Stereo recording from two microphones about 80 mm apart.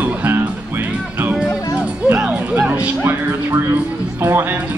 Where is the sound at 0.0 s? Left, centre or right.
Right.